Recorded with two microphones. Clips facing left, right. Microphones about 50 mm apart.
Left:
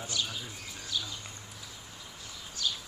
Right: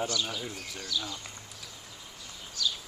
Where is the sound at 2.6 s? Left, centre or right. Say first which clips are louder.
Right 2 dB; left.